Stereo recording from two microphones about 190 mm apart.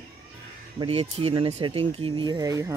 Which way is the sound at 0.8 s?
30° right (ahead or behind).